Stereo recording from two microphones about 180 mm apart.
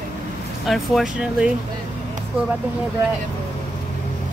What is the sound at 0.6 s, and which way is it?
Speech, centre (ahead or behind).